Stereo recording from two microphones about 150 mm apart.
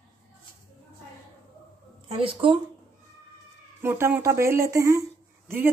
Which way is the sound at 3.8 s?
15° right (ahead or behind).